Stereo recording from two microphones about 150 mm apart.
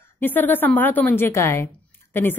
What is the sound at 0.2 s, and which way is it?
A woman's voice, 10° left (ahead or behind).